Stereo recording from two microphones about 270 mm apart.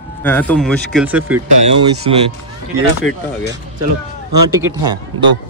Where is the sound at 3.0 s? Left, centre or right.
Left.